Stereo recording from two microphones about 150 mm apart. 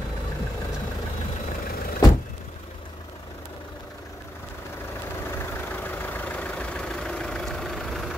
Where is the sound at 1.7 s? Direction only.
80° left.